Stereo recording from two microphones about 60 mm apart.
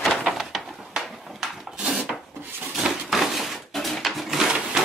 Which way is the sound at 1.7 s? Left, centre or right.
Centre.